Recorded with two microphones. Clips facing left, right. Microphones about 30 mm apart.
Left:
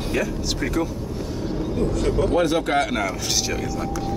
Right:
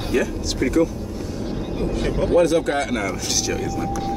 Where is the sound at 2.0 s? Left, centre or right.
Right.